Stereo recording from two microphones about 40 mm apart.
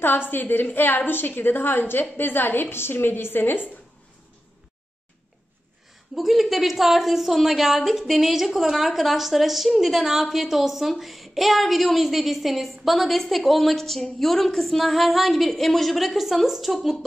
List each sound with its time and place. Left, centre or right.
0.3 s a woman's voice: left
6.1 s a woman's voice: centre